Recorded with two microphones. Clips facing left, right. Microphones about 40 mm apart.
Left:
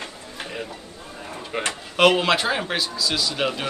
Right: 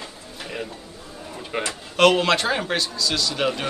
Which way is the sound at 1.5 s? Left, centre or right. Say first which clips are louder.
Even; centre.